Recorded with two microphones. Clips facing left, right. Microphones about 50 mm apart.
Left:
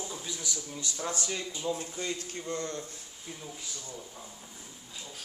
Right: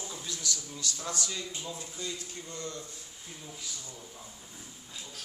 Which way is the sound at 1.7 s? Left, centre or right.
Left.